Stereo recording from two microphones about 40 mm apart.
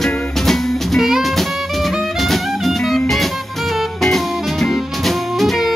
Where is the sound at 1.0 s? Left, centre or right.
Centre.